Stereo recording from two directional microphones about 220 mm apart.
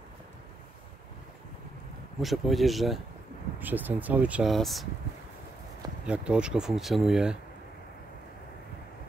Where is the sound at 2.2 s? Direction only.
Centre (ahead or behind).